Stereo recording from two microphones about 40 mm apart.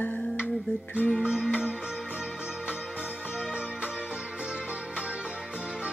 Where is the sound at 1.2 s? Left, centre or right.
Right.